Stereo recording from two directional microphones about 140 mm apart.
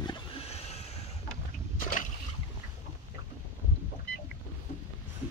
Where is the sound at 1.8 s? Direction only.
70° left (ahead or behind).